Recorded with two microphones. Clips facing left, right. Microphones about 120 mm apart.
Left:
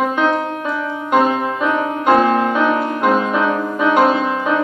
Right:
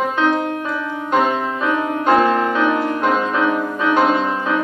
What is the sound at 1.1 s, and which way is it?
Music, 15° left (ahead or behind).